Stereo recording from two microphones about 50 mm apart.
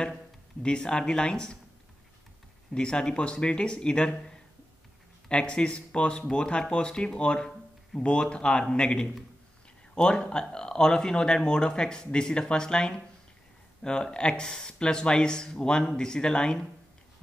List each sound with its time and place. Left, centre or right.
0.6 s speech: centre
2.7 s speech: centre